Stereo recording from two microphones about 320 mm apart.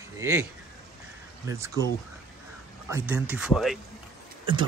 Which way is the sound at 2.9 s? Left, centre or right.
Centre.